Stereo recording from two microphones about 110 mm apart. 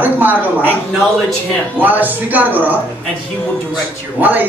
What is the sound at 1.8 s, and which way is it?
Speech, 15° right (ahead or behind).